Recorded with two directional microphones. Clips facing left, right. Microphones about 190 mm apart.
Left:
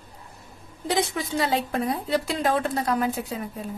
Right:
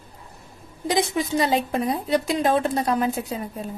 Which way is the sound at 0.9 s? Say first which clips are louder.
Right 3 dB; 15° right (ahead or behind).